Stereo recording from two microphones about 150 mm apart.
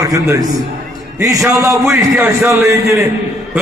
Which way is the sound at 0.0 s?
20° right (ahead or behind).